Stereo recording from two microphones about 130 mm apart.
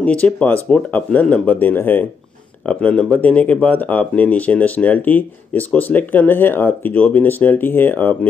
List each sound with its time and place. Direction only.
0.0 s speech: 10° left (ahead or behind)